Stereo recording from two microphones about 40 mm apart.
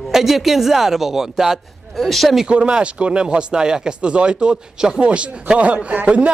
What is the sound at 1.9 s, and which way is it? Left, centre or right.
Speech, centre.